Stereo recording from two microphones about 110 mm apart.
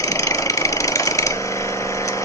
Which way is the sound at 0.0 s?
30° left (ahead or behind).